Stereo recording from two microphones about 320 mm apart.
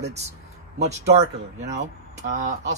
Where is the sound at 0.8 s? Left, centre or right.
Right.